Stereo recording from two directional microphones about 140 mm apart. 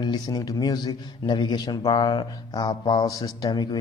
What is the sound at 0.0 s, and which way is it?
A man's voice, 30° left (ahead or behind).